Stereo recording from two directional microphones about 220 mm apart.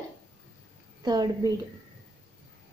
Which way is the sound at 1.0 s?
20° right (ahead or behind).